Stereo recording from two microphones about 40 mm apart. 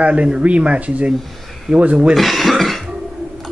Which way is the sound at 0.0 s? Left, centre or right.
Right.